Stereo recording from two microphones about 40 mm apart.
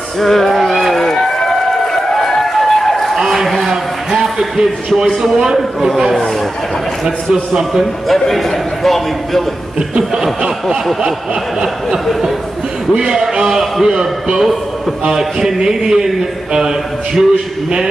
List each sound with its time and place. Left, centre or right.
0.2 s speech: centre
0.9 s run: centre
3.2 s a sound: centre
4.9 s a man's voice: centre
7.8 s a man's voice: centre
9.8 s a man's voice: centre
13.3 s a man's voice: centre